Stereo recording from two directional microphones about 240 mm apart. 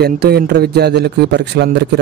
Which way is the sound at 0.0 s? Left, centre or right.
Right.